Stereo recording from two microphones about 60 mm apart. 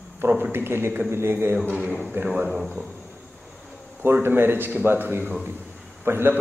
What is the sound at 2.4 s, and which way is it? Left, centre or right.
Speech, centre.